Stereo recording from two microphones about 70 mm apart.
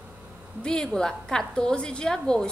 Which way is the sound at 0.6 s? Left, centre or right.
Centre.